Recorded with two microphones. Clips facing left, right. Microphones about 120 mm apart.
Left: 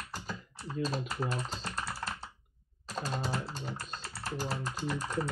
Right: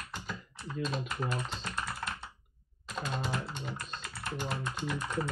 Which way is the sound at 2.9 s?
35° left (ahead or behind).